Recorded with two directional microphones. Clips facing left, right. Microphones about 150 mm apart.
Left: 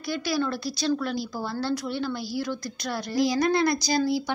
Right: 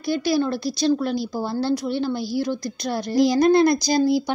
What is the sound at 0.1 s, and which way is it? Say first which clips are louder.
Speech: right 6 dB; 25° right (ahead or behind).